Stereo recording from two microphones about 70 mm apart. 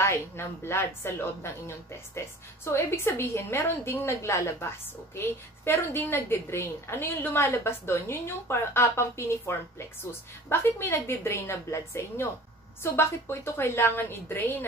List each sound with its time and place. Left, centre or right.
0.0 s a woman's voice: left